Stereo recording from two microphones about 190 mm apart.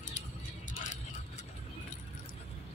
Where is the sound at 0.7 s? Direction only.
40° left (ahead or behind).